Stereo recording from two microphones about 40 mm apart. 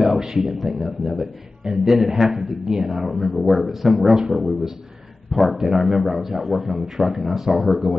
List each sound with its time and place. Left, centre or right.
0.2 s a man's voice: centre